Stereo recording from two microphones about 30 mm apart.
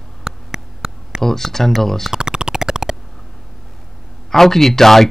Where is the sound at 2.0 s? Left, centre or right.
Right.